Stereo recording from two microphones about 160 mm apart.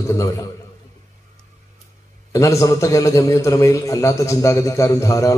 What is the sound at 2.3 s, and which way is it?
A man's voice, 20° left (ahead or behind).